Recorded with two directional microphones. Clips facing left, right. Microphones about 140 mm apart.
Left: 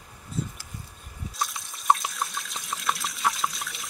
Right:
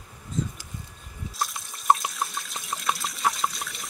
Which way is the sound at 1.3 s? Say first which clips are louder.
Right 1 dB; centre (ahead or behind).